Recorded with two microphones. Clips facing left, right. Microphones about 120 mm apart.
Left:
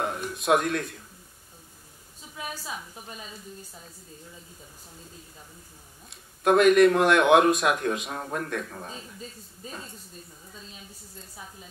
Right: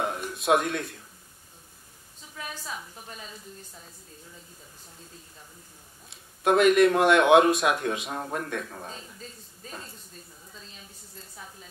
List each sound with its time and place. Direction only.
0.0 s a sound: centre (ahead or behind)
2.3 s a woman's voice: 5° left (ahead or behind)
6.0 s speech: centre (ahead or behind)
10.5 s speech: 5° left (ahead or behind)